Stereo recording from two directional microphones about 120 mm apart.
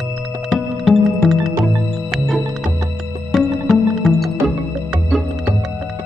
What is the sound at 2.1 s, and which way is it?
Music, centre (ahead or behind).